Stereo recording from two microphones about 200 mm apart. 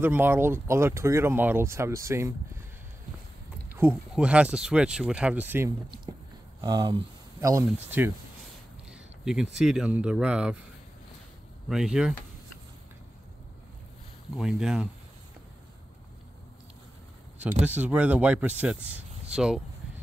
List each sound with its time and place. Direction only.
0.0 s speech: 10° right (ahead or behind)
3.7 s speech: 10° right (ahead or behind)
6.1 s speech: 20° right (ahead or behind)
11.7 s speech: 5° right (ahead or behind)
14.3 s speech: 5° right (ahead or behind)
17.6 s speech: 5° right (ahead or behind)